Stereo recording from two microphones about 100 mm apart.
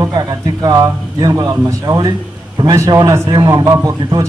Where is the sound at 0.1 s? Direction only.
45° right (ahead or behind).